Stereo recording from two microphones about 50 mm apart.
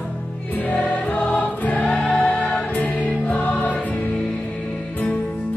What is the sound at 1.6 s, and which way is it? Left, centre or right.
Choir, left.